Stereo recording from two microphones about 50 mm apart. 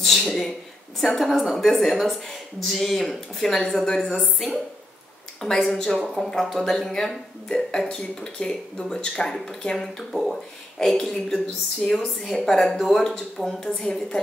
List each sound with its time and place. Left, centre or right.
0.0 s a woman's voice: centre